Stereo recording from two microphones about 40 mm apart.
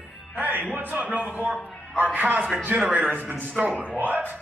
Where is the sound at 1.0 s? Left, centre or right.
Right.